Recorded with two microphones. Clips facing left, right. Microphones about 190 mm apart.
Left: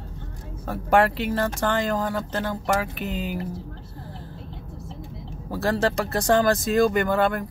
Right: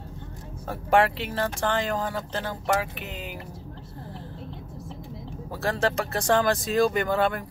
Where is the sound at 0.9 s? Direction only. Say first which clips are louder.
Left 2 dB; 45° left (ahead or behind).